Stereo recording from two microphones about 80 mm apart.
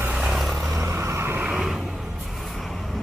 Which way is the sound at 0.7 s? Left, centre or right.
Right.